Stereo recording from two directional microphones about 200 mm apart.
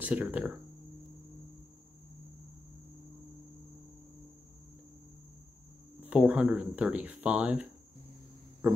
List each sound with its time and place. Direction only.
0.0 s speech: 10° right (ahead or behind)
6.0 s speech: 5° right (ahead or behind)